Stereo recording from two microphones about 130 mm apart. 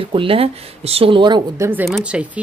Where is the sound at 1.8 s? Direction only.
5° right (ahead or behind).